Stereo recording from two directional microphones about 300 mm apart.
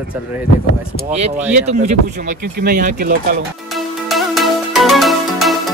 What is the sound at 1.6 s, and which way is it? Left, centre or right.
Speech, right.